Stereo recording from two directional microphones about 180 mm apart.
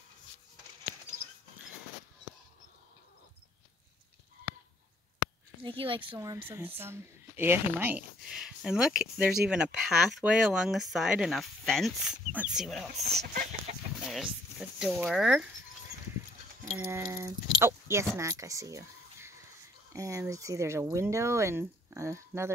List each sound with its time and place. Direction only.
5.6 s speech: 30° right (ahead or behind)
6.1 s speech: 15° right (ahead or behind)
13.2 s chicken: 45° right (ahead or behind)
14.0 s speech: centre (ahead or behind)
16.7 s speech: 10° right (ahead or behind)